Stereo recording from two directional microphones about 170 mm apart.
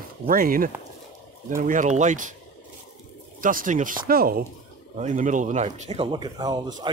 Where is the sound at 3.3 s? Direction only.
50° right (ahead or behind).